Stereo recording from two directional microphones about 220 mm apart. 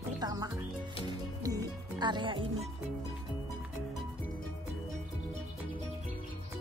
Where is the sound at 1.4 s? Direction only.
15° right (ahead or behind).